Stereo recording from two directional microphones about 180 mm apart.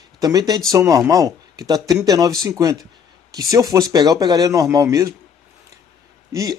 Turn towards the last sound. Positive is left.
turn(degrees=-20)  # may be behind; listen again after turning